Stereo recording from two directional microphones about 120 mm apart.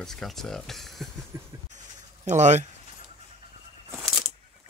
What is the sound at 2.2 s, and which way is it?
Speech, 80° right.